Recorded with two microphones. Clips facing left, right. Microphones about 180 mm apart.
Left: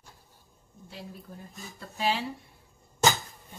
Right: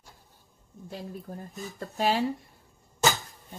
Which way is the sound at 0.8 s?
45° right (ahead or behind).